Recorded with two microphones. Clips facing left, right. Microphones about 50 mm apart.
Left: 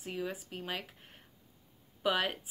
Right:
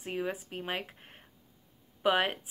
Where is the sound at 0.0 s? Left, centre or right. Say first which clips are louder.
Right 4 dB; right.